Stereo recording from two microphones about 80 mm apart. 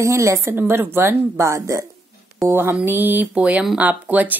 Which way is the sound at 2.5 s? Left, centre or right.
Right.